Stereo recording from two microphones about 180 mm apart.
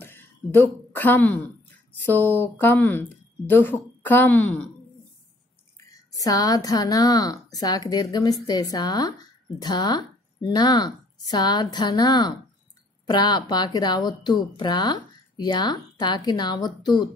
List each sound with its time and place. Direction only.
0.0 s a sound: 10° left (ahead or behind)
2.0 s a woman's voice: 10° left (ahead or behind)
5.9 s a woman's voice: 20° left (ahead or behind)